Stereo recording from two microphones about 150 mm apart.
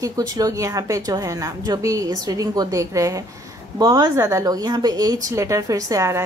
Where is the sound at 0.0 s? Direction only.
25° right (ahead or behind).